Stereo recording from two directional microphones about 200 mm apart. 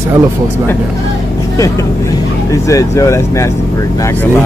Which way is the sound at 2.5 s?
15° left (ahead or behind).